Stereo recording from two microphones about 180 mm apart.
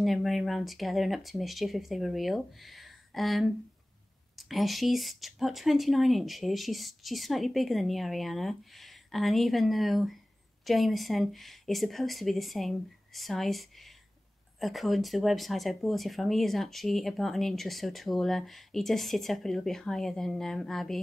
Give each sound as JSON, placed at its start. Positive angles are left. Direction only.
{"t": 0.0, "sound": "speech", "side_deg": 0}